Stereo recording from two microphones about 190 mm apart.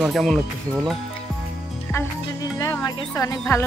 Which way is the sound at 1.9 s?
15° left (ahead or behind).